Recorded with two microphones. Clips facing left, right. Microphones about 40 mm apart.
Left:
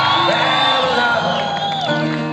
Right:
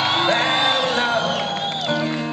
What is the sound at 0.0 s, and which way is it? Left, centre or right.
Crowd, centre.